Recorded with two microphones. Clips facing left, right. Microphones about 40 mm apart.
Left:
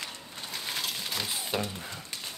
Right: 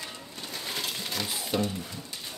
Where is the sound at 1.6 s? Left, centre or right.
Left.